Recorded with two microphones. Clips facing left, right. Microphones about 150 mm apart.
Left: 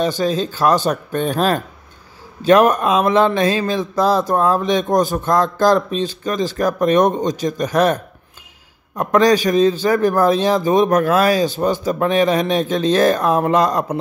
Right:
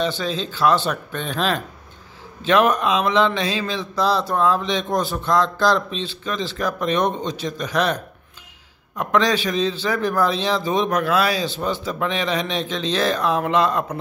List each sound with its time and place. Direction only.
0.0 s mantra: 45° left (ahead or behind)